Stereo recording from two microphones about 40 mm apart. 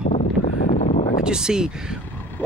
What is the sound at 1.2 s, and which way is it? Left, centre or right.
Speech, centre.